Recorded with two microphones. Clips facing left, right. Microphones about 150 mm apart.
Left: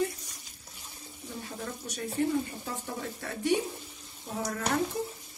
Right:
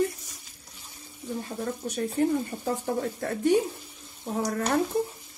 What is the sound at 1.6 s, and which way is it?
Speech, 40° right (ahead or behind).